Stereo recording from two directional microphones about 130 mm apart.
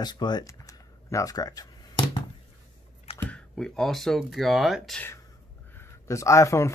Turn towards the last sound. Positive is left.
turn(degrees=20)  # may be behind; listen again after turning